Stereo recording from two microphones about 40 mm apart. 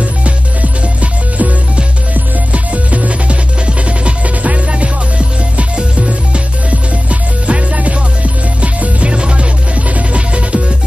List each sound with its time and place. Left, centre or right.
0.2 s music: right
2.5 s music: right